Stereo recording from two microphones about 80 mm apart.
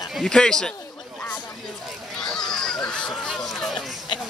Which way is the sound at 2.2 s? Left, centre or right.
Centre.